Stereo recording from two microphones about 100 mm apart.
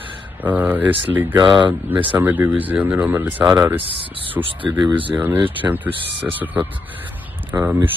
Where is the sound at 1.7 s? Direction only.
15° right (ahead or behind).